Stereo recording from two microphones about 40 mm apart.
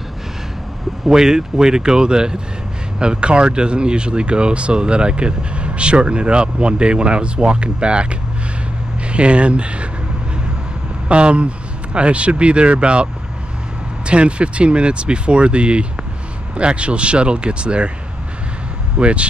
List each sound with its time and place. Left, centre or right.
1.0 s speech: centre
11.1 s speech: right
18.9 s speech: right